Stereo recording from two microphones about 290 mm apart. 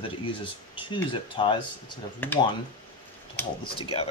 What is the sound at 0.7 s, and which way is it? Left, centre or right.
Speech, centre.